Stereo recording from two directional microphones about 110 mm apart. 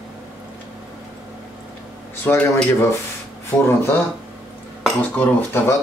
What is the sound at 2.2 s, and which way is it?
Speech, 20° left (ahead or behind).